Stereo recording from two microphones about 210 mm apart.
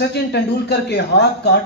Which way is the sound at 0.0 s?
55° left (ahead or behind).